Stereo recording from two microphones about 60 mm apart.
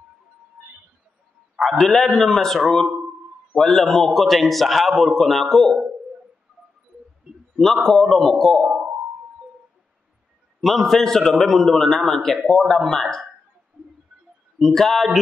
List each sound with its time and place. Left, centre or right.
1.6 s a man's voice: centre
7.8 s a man's voice: centre
8.6 s a sound: centre
10.6 s a man's voice: centre
14.6 s a man's voice: centre